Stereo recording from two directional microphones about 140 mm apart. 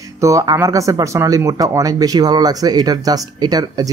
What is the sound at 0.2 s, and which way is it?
Speech, 25° right (ahead or behind).